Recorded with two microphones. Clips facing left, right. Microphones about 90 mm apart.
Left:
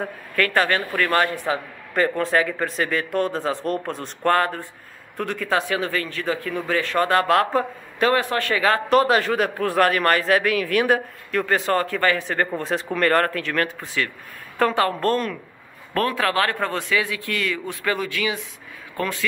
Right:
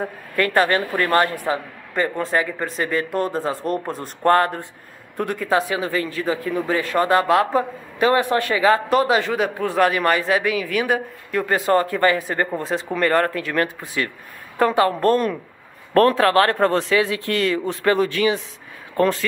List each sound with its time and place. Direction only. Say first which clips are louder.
0.6 s speech: right 3 dB; 20° right (ahead or behind)
2.0 s speech: left 1 dB; centre (ahead or behind)
4.2 s speech: right 3 dB; 30° right (ahead or behind)
5.1 s a man's voice: right 3 dB; 15° right (ahead or behind)
7.3 s speech: right 1 dB; 5° right (ahead or behind)
8.1 s a man's voice: right 3 dB; 15° right (ahead or behind)
11.7 s speech: right 5 dB; 20° right (ahead or behind)
12.2 s a man's voice: right 1 dB; 10° right (ahead or behind)
12.6 s a man's voice: left 1 dB; centre (ahead or behind); by 15.3 s 20° right (ahead or behind)
15.9 s speech: right 7 dB; 40° right (ahead or behind)